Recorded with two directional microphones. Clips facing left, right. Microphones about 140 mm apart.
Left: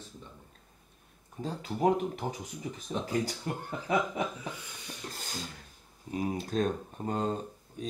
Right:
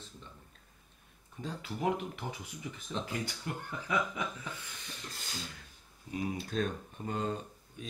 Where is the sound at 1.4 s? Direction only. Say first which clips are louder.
Left 6 dB; 40° left (ahead or behind).